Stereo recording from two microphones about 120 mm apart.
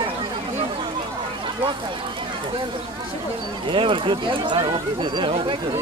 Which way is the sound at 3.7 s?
45° right (ahead or behind).